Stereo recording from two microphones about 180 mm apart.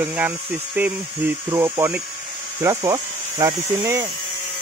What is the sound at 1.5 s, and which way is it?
Speech, 15° right (ahead or behind).